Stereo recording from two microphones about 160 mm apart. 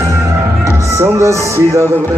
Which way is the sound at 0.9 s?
15° right (ahead or behind).